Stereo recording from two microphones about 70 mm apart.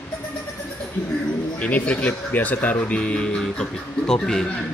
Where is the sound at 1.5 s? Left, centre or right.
Centre.